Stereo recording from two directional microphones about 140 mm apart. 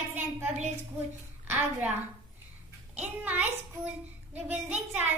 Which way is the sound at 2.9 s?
10° right (ahead or behind).